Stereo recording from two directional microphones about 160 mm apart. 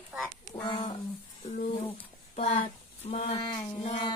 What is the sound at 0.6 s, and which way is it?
Speech, 25° left (ahead or behind).